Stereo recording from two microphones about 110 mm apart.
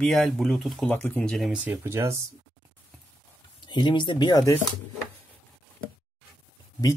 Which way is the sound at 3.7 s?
45° left (ahead or behind).